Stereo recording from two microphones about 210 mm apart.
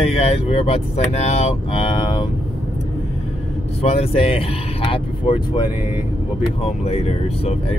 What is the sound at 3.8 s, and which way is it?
Speech, 30° left (ahead or behind).